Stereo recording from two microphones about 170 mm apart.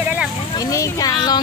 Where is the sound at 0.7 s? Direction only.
20° left (ahead or behind).